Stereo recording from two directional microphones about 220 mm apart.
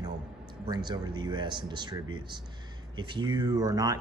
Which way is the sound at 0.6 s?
20° right (ahead or behind).